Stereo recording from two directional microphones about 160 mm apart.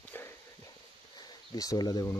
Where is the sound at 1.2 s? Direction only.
25° left (ahead or behind).